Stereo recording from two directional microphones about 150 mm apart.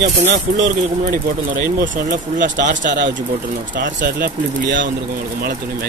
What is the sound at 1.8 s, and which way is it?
Speech, 60° right (ahead or behind).